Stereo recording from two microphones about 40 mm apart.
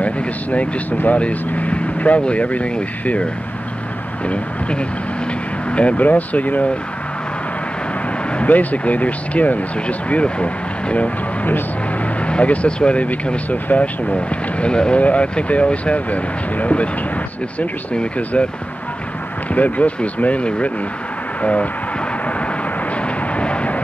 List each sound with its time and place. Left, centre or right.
0.0 s vehicle: left
1.0 s speech: left
4.3 s speech: left
8.5 s speech: left
12.3 s speech: left
14.0 s speech: left
19.5 s speech: left
23.3 s vehicle: left